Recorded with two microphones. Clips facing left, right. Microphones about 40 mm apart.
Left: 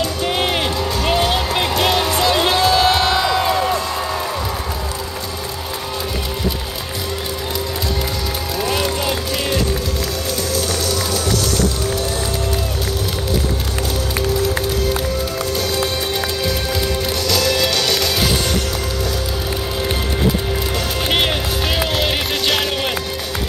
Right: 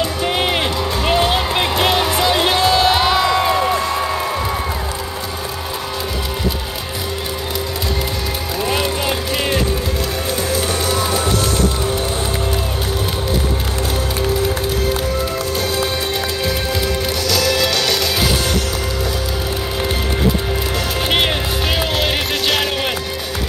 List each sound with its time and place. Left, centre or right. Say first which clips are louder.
0.0 s music: right 1 dB; centre
8.6 s music: right 1 dB; centre
10.5 s music: right 2 dB; right
17.3 s music: right 1 dB; centre
21.1 s music: even; centre